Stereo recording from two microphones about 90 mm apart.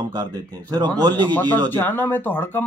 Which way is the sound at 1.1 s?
20° left (ahead or behind).